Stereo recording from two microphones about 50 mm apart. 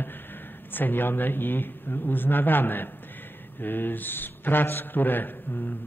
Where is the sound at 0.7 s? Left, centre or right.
Left.